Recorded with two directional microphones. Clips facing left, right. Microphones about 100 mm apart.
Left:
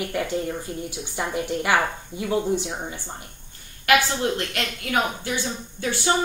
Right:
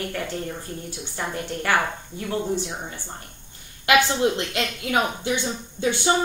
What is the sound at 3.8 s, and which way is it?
A woman's voice, 20° right (ahead or behind).